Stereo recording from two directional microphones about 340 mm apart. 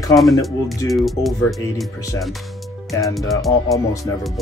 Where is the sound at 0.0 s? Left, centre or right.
Centre.